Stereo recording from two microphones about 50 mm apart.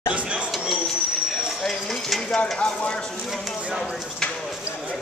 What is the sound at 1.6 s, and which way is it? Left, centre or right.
Speech, centre.